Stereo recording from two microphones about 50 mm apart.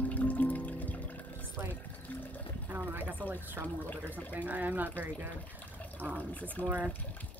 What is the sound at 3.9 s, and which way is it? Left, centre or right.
Speech, left.